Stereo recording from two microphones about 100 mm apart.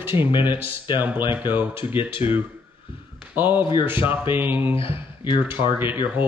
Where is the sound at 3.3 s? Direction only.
20° right (ahead or behind).